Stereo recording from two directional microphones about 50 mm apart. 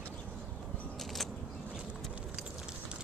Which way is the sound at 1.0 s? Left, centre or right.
Centre.